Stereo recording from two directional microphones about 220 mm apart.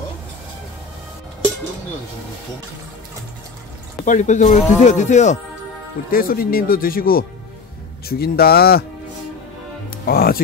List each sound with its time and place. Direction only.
4.0 s a man's voice: 35° left (ahead or behind)
10.0 s speech: 40° left (ahead or behind)